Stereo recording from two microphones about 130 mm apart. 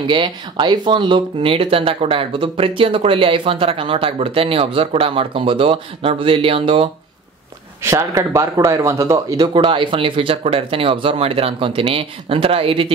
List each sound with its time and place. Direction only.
0.0 s speech: 35° right (ahead or behind)
7.8 s speech: 20° right (ahead or behind)
9.5 s speech: 40° right (ahead or behind)